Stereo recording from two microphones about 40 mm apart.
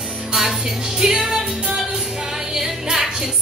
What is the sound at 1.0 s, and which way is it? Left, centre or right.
Music, centre.